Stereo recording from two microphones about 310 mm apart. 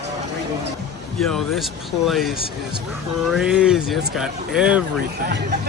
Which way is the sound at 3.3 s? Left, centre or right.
Centre.